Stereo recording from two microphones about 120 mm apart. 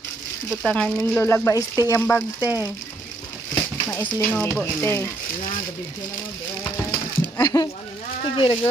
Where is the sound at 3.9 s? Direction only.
15° left (ahead or behind).